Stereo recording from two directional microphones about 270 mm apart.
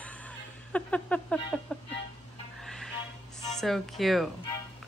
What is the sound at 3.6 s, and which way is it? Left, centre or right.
Speech, centre.